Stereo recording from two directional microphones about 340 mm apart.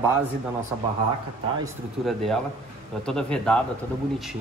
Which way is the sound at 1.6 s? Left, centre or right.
Centre.